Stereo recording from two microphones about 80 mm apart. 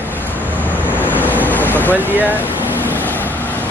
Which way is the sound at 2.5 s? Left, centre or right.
Right.